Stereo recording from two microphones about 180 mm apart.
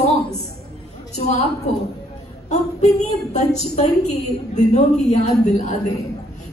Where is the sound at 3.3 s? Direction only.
40° left (ahead or behind).